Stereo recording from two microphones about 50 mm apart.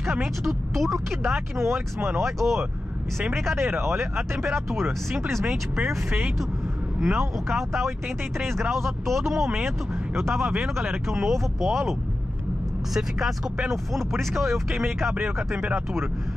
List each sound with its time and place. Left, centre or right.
0.4 s speech: centre
1.6 s speech: right
2.2 s speech: centre
3.5 s speech: right
4.6 s speech: centre
7.0 s speech: centre
10.1 s speech: right
11.1 s speech: centre